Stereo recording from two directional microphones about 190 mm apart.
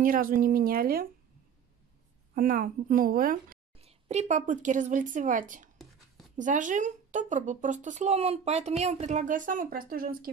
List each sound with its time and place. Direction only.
0.0 s a woman's voice: 50° right (ahead or behind)
2.3 s a woman's voice: 45° right (ahead or behind)
3.7 s speech: 35° right (ahead or behind)